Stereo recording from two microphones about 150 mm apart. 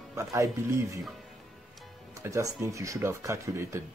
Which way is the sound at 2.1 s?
20° right (ahead or behind).